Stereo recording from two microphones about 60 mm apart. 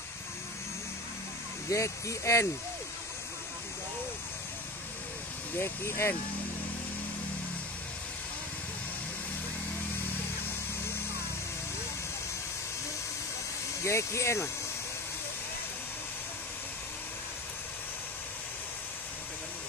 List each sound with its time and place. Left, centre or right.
1.7 s speech: left
5.6 s speech: left
13.8 s speech: left